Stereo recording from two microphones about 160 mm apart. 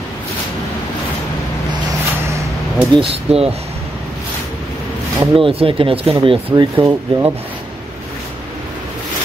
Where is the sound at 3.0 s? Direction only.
40° right (ahead or behind).